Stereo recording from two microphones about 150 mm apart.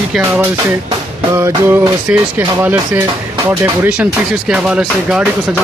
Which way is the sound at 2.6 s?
10° right (ahead or behind).